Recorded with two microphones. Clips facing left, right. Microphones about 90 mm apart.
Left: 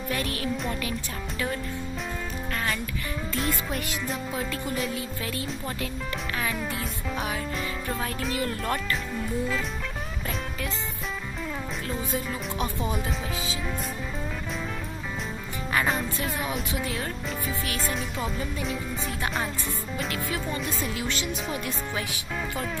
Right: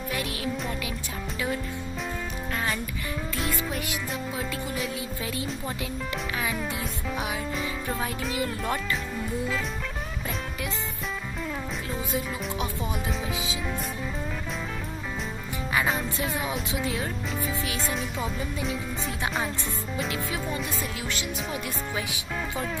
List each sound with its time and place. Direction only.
0.1 s music: 10° right (ahead or behind)
3.3 s music: centre (ahead or behind)
4.4 s speech: centre (ahead or behind)
5.2 s music: 15° right (ahead or behind)
6.4 s speech: centre (ahead or behind)
8.4 s music: 10° right (ahead or behind)
12.1 s speech: 5° right (ahead or behind)
15.7 s music: centre (ahead or behind)
16.2 s music: 15° right (ahead or behind)
17.9 s speech: centre (ahead or behind)
20.4 s speech: 5° right (ahead or behind)
21.6 s music: 15° right (ahead or behind)